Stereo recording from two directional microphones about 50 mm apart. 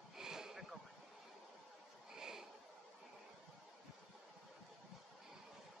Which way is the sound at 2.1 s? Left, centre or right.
Centre.